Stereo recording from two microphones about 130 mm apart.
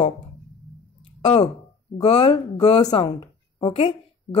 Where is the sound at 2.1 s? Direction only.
50° left (ahead or behind).